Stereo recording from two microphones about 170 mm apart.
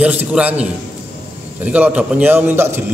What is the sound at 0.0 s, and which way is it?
A man's voice, 5° right (ahead or behind).